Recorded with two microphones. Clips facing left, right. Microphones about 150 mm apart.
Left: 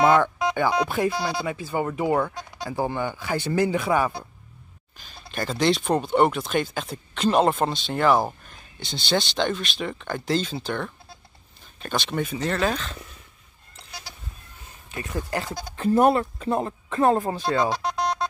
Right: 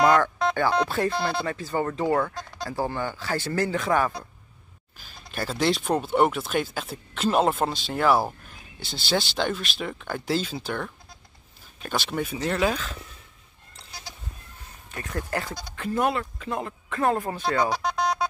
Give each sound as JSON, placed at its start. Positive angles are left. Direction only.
{"t": 0.0, "sound": "music", "side_deg": 15}
{"t": 0.8, "sound": "speech", "side_deg": 15}
{"t": 4.9, "sound": "speech", "side_deg": -5}
{"t": 14.9, "sound": "speech", "side_deg": 10}
{"t": 15.7, "sound": "speech", "side_deg": 35}
{"t": 17.6, "sound": "music", "side_deg": 0}